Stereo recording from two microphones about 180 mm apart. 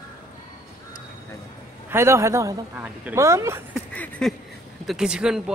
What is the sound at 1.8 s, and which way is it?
Speech, 15° right (ahead or behind).